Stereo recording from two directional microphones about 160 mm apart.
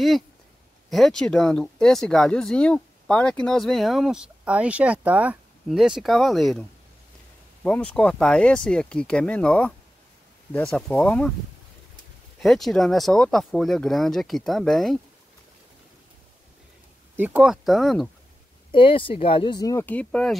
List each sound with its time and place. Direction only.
0.8 s speech: centre (ahead or behind)
7.6 s speech: 5° left (ahead or behind)
12.4 s speech: centre (ahead or behind)
17.2 s speech: 5° right (ahead or behind)
18.7 s speech: 30° left (ahead or behind); by 20.3 s 5° left (ahead or behind)